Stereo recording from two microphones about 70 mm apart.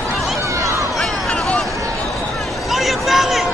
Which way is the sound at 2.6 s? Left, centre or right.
Centre.